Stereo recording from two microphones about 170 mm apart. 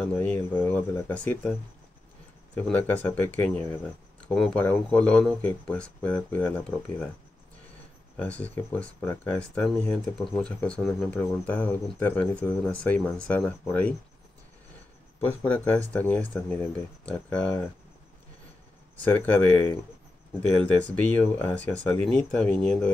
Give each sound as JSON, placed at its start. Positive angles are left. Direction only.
{"t": 0.0, "sound": "speech", "side_deg": 10}
{"t": 2.5, "sound": "speech", "side_deg": 10}
{"t": 8.2, "sound": "speech", "side_deg": 10}
{"t": 15.1, "sound": "speech", "side_deg": 10}
{"t": 19.0, "sound": "speech", "side_deg": 10}